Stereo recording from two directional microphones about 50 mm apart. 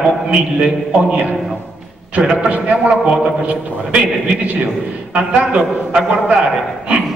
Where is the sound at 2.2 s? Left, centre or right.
Centre.